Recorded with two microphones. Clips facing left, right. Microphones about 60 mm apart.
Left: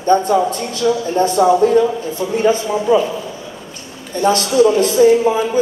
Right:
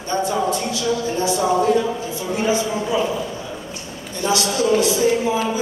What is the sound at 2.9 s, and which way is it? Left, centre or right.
Speech, left.